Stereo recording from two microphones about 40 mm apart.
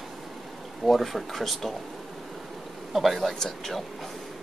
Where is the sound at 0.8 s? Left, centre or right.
Centre.